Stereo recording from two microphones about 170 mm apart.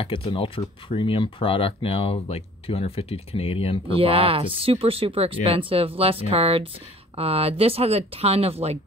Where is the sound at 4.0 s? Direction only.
35° right (ahead or behind).